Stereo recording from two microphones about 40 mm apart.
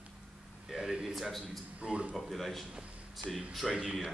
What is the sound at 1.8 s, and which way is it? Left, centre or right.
Speech, right.